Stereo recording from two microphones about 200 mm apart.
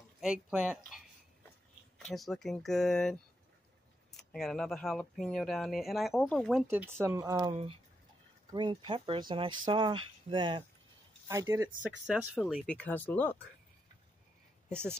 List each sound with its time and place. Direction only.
0.2 s speech: 5° right (ahead or behind)
2.0 s speech: centre (ahead or behind)
6.7 s speech: 10° right (ahead or behind)
12.1 s speech: 5° right (ahead or behind)